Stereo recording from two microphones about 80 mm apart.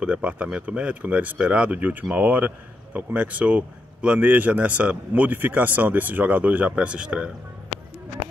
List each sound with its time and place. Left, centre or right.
0.0 s speech: centre